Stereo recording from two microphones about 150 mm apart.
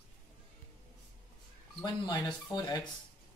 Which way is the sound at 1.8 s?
30° left (ahead or behind).